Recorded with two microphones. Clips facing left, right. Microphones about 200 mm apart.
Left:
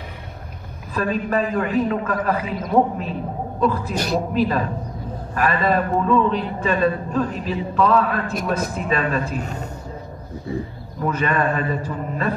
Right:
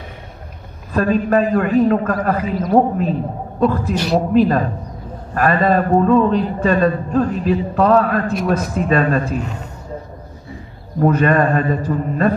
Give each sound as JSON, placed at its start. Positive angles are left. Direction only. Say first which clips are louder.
{"t": 0.9, "sound": "a man's voice", "louder": "right 6 dB", "side_deg": -40}
{"t": 11.0, "sound": "a man's voice", "louder": "right 7 dB", "side_deg": -45}